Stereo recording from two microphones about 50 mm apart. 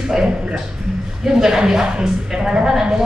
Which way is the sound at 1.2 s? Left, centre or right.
Centre.